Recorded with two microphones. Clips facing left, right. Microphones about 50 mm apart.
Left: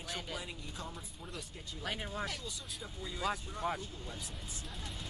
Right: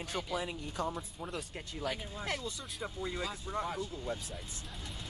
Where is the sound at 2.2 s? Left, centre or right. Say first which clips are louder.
Right 4 dB; right.